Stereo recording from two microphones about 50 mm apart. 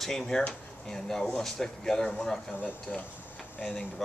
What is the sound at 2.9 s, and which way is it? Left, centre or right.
Speech, left.